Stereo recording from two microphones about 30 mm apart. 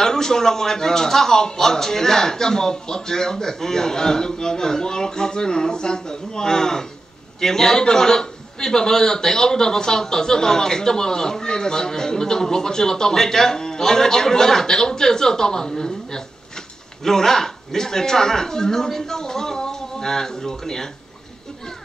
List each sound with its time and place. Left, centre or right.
0.0 s a man's voice: centre